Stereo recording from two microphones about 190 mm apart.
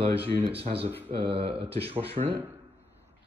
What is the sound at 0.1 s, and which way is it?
Speech, 30° right (ahead or behind).